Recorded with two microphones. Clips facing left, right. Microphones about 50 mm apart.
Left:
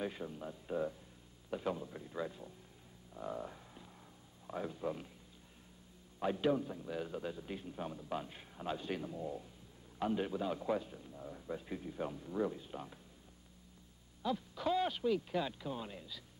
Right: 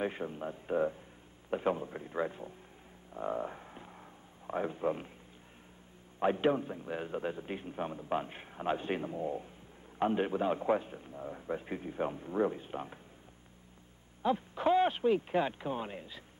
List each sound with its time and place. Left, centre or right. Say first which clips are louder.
0.0 s a man's voice: right 6 dB; right
6.1 s a man's voice: right 5 dB; right
14.2 s a man's voice: right 7 dB; right